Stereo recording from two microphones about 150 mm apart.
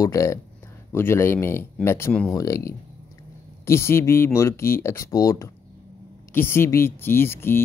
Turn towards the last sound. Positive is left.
turn(degrees=15)  # may be behind; listen again after turning